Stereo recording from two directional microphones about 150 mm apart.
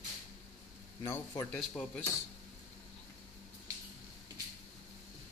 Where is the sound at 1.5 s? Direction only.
5° left (ahead or behind).